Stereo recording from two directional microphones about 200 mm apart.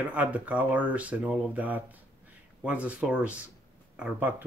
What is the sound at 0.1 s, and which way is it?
Speech, 5° right (ahead or behind).